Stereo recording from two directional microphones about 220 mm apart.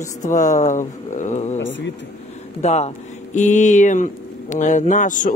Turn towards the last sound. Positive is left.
turn(degrees=35)  # may be behind; listen again after turning